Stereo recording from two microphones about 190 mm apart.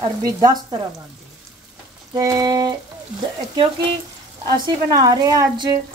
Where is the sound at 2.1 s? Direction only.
20° right (ahead or behind).